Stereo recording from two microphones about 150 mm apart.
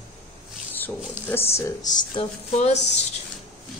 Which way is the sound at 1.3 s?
15° left (ahead or behind).